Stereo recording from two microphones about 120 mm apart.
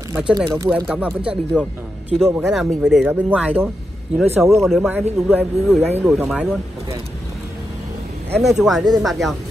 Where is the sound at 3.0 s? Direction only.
10° right (ahead or behind).